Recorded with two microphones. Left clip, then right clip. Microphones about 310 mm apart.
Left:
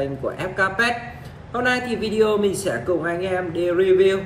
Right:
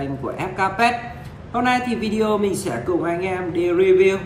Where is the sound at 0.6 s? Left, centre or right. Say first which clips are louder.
Right 1 dB; right.